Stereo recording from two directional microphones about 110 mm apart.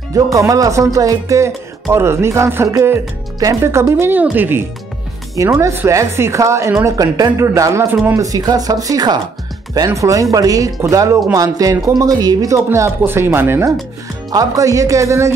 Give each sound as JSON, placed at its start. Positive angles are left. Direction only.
{"t": 0.1, "sound": "speech", "side_deg": -30}
{"t": 8.2, "sound": "speech", "side_deg": -35}
{"t": 14.3, "sound": "speech", "side_deg": -35}